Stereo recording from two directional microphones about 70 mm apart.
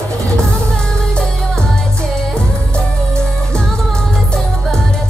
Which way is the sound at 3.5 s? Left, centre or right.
Centre.